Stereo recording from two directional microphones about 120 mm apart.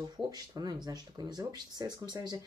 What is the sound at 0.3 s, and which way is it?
Speech, 35° right (ahead or behind).